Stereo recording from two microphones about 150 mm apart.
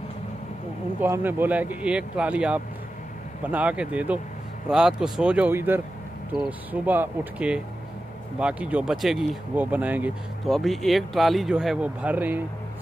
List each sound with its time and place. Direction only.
1.0 s speech: 15° right (ahead or behind)
10.5 s speech: centre (ahead or behind)